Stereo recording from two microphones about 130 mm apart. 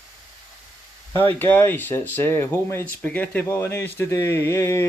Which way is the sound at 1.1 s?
15° left (ahead or behind).